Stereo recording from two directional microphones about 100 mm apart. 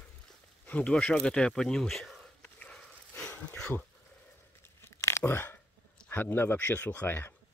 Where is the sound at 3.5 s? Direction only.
15° left (ahead or behind).